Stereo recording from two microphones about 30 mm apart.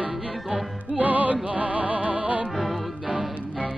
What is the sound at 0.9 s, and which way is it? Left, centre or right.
Music, right.